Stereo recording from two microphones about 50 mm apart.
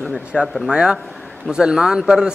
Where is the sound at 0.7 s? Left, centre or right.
Centre.